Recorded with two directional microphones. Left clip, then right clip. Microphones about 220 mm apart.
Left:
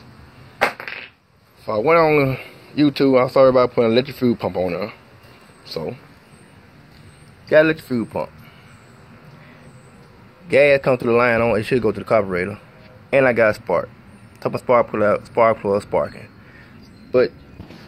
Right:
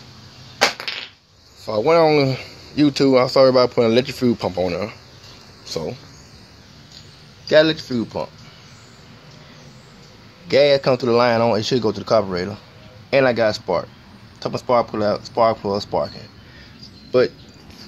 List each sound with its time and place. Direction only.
1.7 s speech: 15° right (ahead or behind)
7.4 s speech: centre (ahead or behind)
10.5 s speech: 5° right (ahead or behind)
13.1 s speech: 5° left (ahead or behind)
17.1 s speech: 10° right (ahead or behind)